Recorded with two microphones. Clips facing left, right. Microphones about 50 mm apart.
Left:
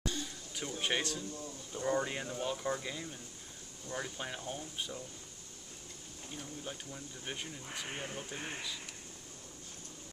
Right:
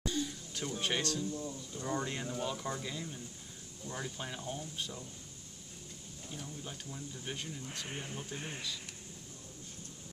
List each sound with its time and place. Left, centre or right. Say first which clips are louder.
0.6 s speech: even; centre
6.3 s speech: left 1 dB; centre